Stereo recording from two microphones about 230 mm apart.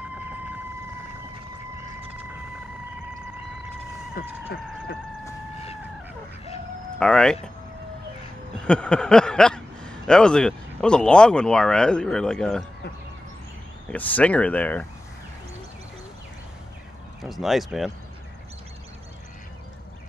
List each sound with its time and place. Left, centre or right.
7.0 s speech: centre
8.5 s speech: centre
13.8 s speech: centre
17.2 s speech: centre